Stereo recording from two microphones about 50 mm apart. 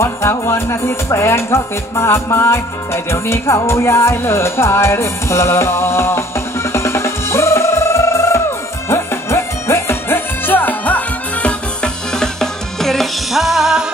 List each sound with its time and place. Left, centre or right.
0.0 s music: left
11.8 s music: centre